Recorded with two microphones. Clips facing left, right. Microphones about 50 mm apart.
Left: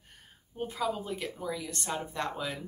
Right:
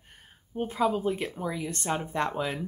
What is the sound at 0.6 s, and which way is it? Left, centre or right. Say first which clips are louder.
Speech: right 6 dB; right.